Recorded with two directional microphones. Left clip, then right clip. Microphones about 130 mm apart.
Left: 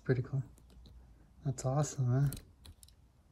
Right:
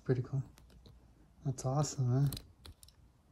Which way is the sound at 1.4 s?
15° right (ahead or behind).